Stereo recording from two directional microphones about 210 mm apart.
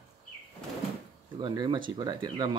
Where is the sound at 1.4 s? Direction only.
20° right (ahead or behind).